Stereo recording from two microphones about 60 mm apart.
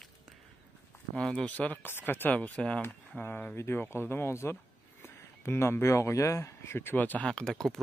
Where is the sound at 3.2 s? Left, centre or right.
Left.